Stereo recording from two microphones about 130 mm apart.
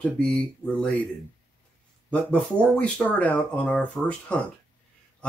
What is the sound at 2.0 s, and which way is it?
Speech, 10° left (ahead or behind).